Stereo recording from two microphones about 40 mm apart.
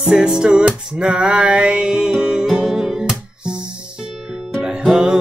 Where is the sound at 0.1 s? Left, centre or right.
Centre.